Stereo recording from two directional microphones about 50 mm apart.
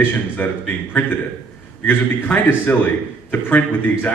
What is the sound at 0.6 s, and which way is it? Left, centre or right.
Speech, left.